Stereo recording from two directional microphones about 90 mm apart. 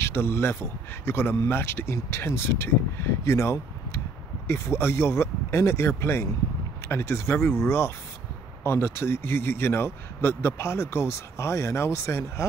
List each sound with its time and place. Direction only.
0.0 s a man's voice: 25° left (ahead or behind)